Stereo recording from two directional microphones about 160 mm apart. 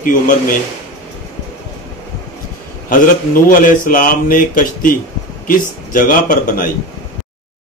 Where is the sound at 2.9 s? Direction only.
60° left (ahead or behind).